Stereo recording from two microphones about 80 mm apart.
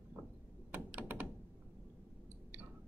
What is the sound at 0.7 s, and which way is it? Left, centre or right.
Computer keyboard, right.